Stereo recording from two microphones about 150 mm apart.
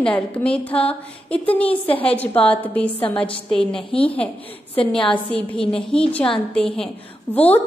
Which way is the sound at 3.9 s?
35° left (ahead or behind).